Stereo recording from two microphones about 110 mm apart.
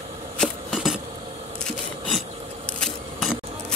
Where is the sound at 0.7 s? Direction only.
5° right (ahead or behind).